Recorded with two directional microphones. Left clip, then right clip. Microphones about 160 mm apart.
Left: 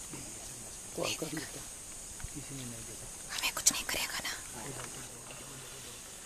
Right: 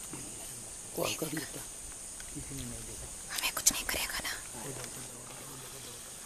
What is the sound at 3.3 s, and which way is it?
Whispering, centre (ahead or behind).